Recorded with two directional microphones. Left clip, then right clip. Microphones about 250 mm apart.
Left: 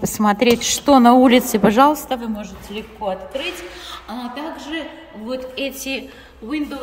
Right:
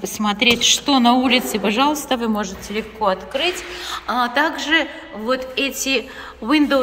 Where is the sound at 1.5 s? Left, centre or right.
Left.